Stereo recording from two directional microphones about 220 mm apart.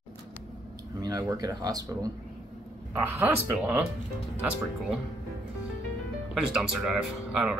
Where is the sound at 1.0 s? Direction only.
15° right (ahead or behind).